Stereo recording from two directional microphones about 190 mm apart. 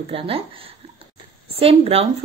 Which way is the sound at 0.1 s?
30° right (ahead or behind).